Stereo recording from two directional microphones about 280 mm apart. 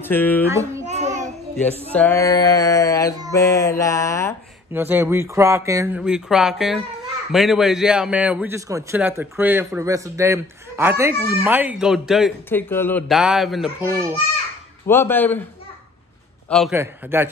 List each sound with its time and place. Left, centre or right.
0.0 s music: centre
0.5 s child singing: centre
0.8 s child singing: right
2.0 s music: centre
4.7 s a man's voice: centre
14.9 s music: centre
16.4 s a man's voice: centre